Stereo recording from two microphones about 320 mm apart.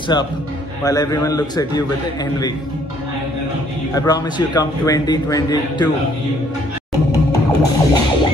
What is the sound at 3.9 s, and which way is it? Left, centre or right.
A man's voice, centre.